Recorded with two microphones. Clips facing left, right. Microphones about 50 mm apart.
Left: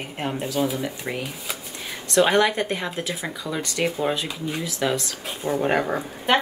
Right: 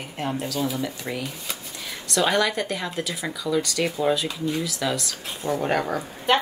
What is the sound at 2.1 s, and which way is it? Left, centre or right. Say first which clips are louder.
Speech: left 3 dB; left.